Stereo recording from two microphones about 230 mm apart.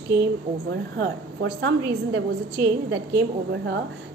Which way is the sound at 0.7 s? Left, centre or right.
Right.